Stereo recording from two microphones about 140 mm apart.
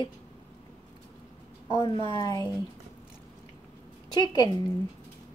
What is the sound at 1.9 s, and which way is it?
Speech, 40° right (ahead or behind).